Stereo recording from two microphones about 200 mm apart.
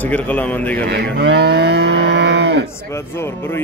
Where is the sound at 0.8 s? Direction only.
60° right (ahead or behind).